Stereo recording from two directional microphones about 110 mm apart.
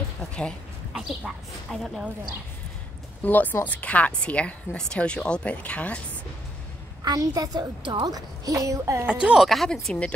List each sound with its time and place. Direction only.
0.9 s speech: centre (ahead or behind)
3.2 s speech: 15° left (ahead or behind)
7.1 s a woman's voice: 35° right (ahead or behind)
9.0 s speech: 10° right (ahead or behind); by 10.1 s 10° left (ahead or behind)